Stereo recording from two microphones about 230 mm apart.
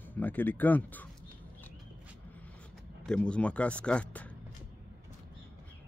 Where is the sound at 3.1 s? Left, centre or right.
Centre.